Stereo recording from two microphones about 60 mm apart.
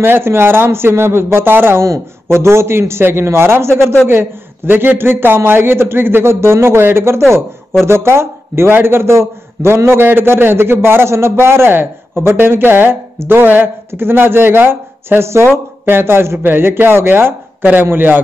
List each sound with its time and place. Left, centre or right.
0.0 s a man's voice: right